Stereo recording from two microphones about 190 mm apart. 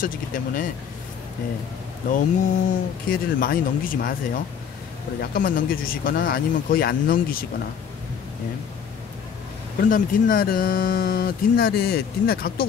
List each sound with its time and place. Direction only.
0.0 s speech: 45° left (ahead or behind)
2.0 s speech: 45° left (ahead or behind)
5.3 s speech: 50° left (ahead or behind)
9.8 s speech: 45° left (ahead or behind)